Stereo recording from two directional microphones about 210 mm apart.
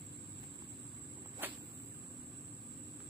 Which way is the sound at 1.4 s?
10° right (ahead or behind).